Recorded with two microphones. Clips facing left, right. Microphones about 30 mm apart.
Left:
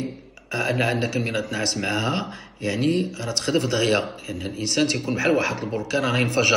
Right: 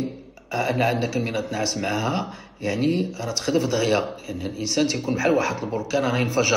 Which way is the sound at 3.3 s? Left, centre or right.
Left.